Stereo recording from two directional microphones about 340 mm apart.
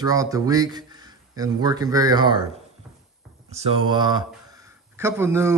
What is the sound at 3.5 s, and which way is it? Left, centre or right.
A man's voice, centre.